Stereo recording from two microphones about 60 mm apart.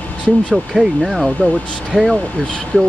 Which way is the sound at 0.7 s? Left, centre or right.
Centre.